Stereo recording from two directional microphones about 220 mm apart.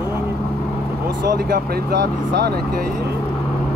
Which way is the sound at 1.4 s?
45° right (ahead or behind).